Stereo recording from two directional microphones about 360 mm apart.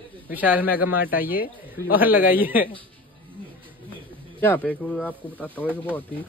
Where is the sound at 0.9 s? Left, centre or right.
Centre.